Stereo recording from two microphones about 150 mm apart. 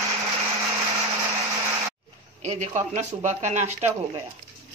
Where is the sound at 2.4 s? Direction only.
50° right (ahead or behind).